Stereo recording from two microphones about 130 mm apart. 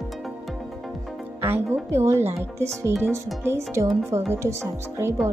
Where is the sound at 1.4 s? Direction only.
20° right (ahead or behind).